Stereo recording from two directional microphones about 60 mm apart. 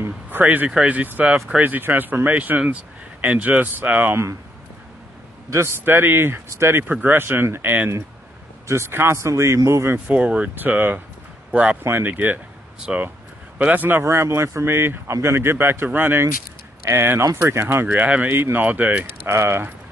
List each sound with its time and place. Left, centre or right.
0.3 s speech: right
5.9 s speech: right
6.8 s speech: right
8.6 s a man's voice: right
10.0 s speech: right
11.5 s speech: centre
11.8 s speech: right
12.1 s speech: right
12.9 s speech: centre
13.6 s speech: right
14.0 s speech: right
17.8 s speech: right
19.2 s speech: right